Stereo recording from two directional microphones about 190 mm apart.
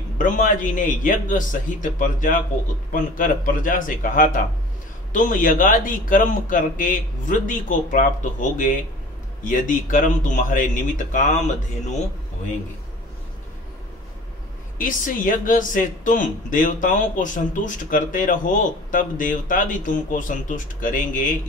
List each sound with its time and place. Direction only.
0.2 s speech: 45° left (ahead or behind)
14.8 s speech: 45° left (ahead or behind)